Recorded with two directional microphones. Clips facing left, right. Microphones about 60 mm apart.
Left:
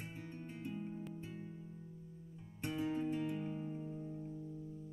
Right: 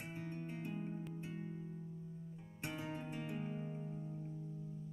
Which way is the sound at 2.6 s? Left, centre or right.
Centre.